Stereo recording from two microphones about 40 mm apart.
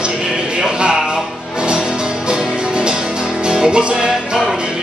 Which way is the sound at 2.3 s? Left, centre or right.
Right.